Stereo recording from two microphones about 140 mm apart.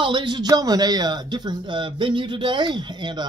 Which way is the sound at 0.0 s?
35° right (ahead or behind).